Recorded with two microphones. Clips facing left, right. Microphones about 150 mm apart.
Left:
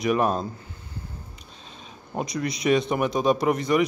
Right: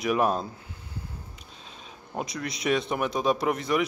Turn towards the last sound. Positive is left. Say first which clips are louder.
# left 4 dB
turn(degrees=0)  # may be behind; listen again after turning